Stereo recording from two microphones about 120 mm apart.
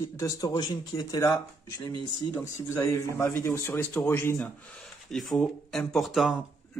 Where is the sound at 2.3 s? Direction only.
20° left (ahead or behind).